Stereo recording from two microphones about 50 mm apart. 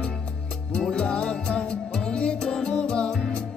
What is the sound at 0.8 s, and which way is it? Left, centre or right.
Music, left.